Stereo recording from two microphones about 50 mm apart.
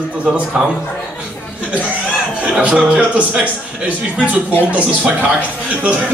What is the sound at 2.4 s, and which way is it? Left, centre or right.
A man's voice, right.